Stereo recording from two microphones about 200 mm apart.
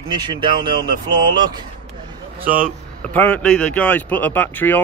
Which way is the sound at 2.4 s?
45° right (ahead or behind).